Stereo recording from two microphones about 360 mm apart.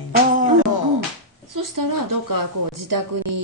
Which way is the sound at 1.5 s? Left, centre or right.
Right.